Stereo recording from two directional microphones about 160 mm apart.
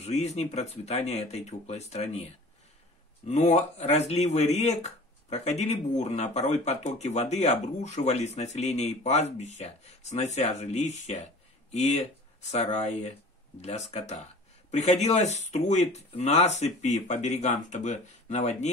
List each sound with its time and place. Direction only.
0.0 s speech: 45° left (ahead or behind)
3.3 s speech: 45° left (ahead or behind)